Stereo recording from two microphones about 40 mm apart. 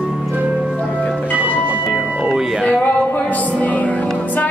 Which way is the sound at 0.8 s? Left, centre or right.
Left.